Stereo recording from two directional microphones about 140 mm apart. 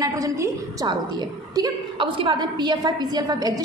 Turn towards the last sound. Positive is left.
turn(degrees=-30)  # may be behind; listen again after turning